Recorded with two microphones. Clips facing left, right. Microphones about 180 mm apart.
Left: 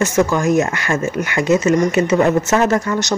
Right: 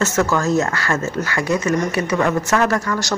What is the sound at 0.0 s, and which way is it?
Speech, 15° left (ahead or behind).